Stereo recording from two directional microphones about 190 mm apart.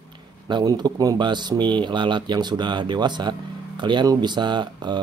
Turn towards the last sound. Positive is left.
turn(degrees=-25)  # may be behind; listen again after turning